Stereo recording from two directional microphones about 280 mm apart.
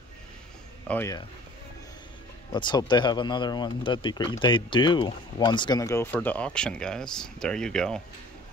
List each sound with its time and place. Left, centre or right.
0.8 s speech: centre
2.5 s speech: centre